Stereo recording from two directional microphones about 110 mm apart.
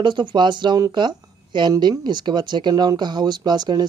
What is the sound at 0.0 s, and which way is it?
Speech, 45° right (ahead or behind).